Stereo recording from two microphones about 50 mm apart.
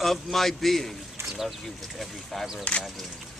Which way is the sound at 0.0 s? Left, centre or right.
Centre.